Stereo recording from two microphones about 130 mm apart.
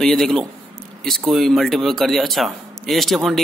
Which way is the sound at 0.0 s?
5° left (ahead or behind).